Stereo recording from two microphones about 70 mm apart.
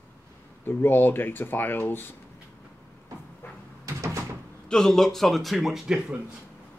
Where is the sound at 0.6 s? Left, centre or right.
Left.